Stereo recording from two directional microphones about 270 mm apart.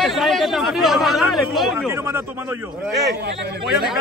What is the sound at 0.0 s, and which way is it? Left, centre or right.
Speech, centre.